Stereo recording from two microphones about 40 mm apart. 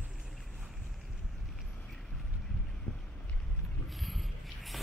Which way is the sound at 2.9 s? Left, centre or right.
Left.